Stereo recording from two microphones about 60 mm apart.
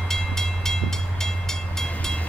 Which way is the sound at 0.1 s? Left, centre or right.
Centre.